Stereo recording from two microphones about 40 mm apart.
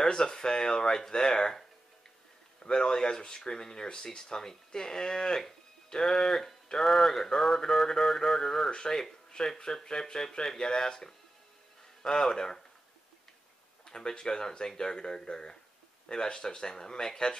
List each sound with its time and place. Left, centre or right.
0.0 s speech: centre
2.6 s speech: left
13.8 s speech: centre